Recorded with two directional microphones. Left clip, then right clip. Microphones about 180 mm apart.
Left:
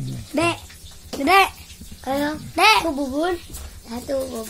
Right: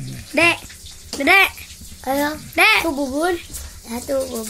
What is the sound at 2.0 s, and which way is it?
Speech, 40° right (ahead or behind).